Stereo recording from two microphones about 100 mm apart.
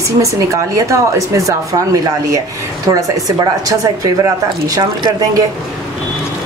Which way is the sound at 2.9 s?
40° right (ahead or behind).